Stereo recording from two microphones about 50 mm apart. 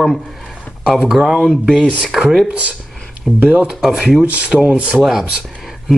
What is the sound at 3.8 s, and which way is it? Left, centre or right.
Speech, centre.